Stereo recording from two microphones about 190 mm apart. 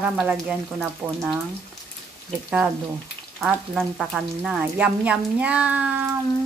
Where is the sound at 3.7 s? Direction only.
Centre (ahead or behind).